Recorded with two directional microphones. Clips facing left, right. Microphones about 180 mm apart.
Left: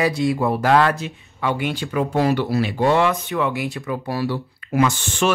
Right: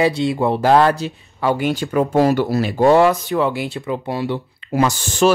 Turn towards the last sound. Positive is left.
turn(degrees=-40)  # may be behind; listen again after turning